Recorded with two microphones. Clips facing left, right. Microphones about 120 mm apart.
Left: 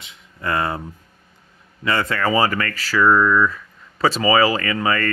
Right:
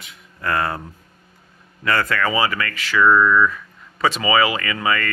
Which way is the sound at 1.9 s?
25° left (ahead or behind).